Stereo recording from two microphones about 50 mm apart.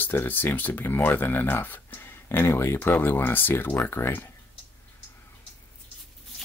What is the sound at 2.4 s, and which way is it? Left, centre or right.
Speech, left.